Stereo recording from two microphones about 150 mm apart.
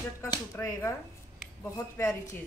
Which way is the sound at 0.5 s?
20° left (ahead or behind).